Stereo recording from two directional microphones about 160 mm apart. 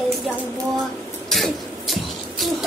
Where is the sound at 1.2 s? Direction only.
Centre (ahead or behind).